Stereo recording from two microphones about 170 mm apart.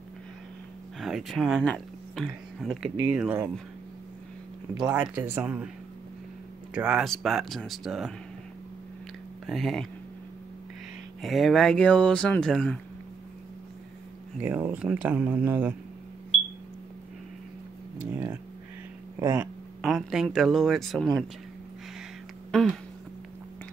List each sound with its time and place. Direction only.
0.9 s speech: centre (ahead or behind)
5.1 s speech: 10° right (ahead or behind)
6.7 s speech: 5° right (ahead or behind)
9.5 s speech: centre (ahead or behind)
11.1 s speech: centre (ahead or behind)
14.4 s speech: 10° right (ahead or behind)
18.1 s a sound: 10° right (ahead or behind)
19.4 s speech: centre (ahead or behind)
22.5 s a sound: 5° left (ahead or behind)